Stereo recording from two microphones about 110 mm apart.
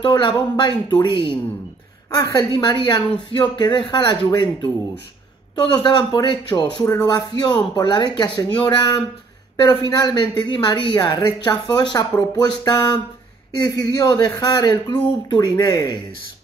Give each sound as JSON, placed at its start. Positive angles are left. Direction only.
{"t": 0.0, "sound": "speech", "side_deg": 45}
{"t": 5.8, "sound": "speech", "side_deg": 45}